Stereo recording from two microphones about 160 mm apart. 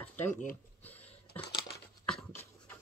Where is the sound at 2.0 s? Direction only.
5° left (ahead or behind).